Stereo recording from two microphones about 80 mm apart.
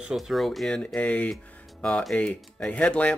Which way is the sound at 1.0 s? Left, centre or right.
Centre.